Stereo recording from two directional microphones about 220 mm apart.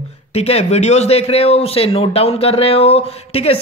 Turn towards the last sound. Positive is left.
turn(degrees=25)  # may be behind; listen again after turning